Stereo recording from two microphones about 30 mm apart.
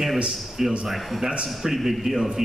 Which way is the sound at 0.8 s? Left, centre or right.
Centre.